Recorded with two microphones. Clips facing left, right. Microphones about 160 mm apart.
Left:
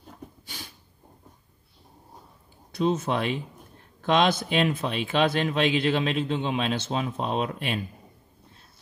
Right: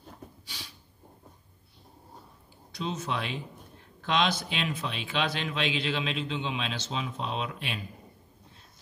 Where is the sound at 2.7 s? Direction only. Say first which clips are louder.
Left 8 dB; 50° left (ahead or behind).